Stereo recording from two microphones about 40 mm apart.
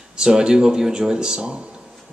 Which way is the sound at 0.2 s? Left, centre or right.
Centre.